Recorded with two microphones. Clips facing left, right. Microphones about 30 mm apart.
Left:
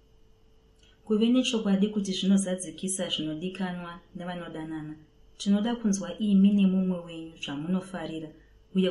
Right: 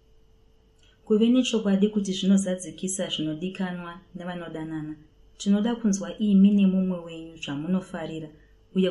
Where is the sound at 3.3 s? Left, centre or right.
Right.